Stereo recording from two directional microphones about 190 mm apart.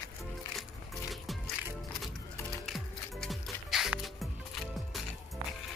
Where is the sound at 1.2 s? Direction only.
Centre (ahead or behind).